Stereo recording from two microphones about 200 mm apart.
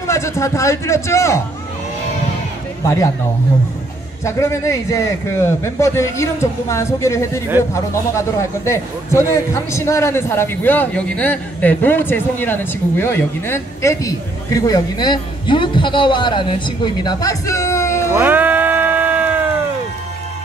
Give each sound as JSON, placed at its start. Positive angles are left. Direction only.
{"t": 0.0, "sound": "a man's voice", "side_deg": 15}
{"t": 2.8, "sound": "a man's voice", "side_deg": 15}
{"t": 4.2, "sound": "a man's voice", "side_deg": 15}
{"t": 18.1, "sound": "music", "side_deg": -10}